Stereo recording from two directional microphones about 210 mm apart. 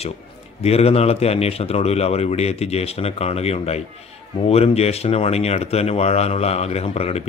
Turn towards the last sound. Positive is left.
turn(degrees=30)  # may be behind; listen again after turning